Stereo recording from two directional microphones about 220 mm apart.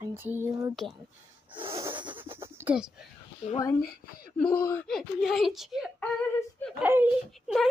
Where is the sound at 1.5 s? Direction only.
25° right (ahead or behind).